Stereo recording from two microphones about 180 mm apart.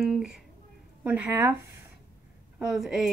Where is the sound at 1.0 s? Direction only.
10° right (ahead or behind).